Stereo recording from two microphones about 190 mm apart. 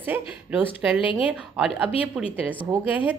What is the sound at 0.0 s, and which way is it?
Speech, 10° right (ahead or behind).